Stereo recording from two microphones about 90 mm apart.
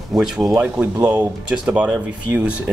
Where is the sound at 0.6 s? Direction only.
20° right (ahead or behind).